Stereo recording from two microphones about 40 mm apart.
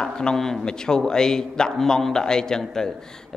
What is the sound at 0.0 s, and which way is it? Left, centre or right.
A man's voice, centre.